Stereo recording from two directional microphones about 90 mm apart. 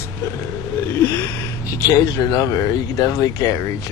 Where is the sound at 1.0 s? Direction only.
30° left (ahead or behind).